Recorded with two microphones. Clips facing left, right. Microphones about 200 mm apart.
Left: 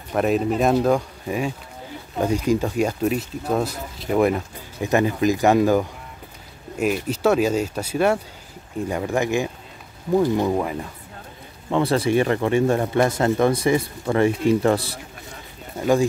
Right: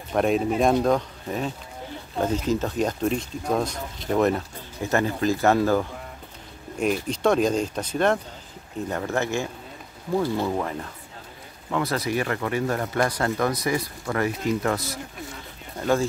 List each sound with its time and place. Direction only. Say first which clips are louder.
0.1 s speech: left 2 dB; centre (ahead or behind)
11.7 s speech: left 6 dB; 30° left (ahead or behind)
15.8 s speech: left 4 dB; 15° left (ahead or behind)